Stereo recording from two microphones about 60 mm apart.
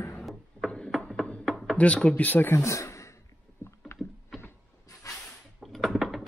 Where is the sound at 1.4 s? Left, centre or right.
Centre.